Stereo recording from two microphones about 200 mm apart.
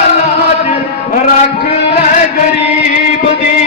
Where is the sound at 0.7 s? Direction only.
35° left (ahead or behind).